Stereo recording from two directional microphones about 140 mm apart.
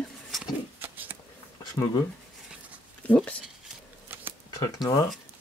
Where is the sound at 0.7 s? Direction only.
15° right (ahead or behind).